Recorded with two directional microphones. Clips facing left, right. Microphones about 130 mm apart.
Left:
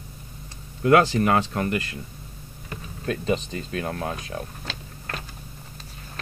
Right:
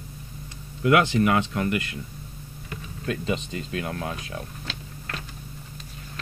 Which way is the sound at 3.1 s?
35° left (ahead or behind).